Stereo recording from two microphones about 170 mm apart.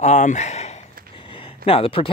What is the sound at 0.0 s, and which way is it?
Speech, 45° left (ahead or behind).